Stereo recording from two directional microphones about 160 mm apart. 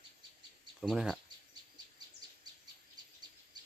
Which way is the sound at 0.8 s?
Centre (ahead or behind).